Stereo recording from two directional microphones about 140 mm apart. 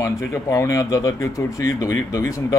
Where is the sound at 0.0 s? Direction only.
20° left (ahead or behind).